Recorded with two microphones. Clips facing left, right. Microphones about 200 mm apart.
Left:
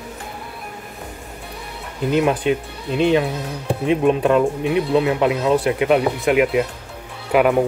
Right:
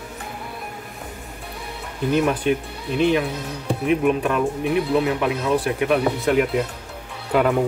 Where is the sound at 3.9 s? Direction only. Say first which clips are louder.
Left 4 dB; 30° left (ahead or behind).